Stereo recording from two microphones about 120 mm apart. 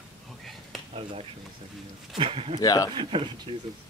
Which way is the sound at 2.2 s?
50° right (ahead or behind).